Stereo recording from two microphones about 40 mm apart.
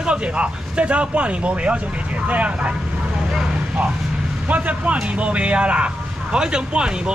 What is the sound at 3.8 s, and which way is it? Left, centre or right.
Speech, right.